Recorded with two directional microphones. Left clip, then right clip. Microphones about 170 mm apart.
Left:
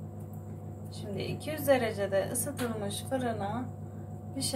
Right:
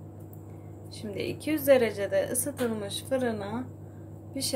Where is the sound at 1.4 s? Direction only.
45° right (ahead or behind).